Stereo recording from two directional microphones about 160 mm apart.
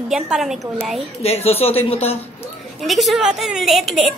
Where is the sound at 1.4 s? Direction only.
40° left (ahead or behind).